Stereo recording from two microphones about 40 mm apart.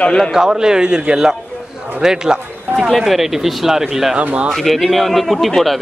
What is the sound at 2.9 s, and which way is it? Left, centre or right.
Speech, centre.